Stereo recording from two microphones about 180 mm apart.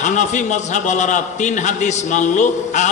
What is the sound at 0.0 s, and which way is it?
A man's voice, 40° left (ahead or behind).